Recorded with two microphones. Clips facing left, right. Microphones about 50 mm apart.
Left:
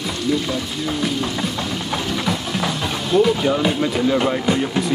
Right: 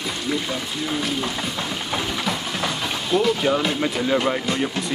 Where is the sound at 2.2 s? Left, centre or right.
Centre.